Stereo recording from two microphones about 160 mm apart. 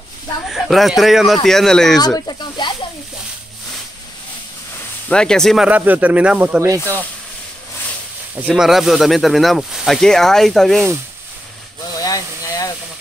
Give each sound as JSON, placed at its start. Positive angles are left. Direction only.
{"t": 0.5, "sound": "speech", "side_deg": 0}
{"t": 2.0, "sound": "speech", "side_deg": 25}
{"t": 5.0, "sound": "speech", "side_deg": 5}
{"t": 5.7, "sound": "speech", "side_deg": -10}
{"t": 8.5, "sound": "speech", "side_deg": 0}
{"t": 12.0, "sound": "a sound", "side_deg": 20}